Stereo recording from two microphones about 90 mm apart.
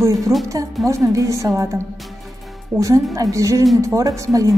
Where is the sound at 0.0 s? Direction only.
40° right (ahead or behind).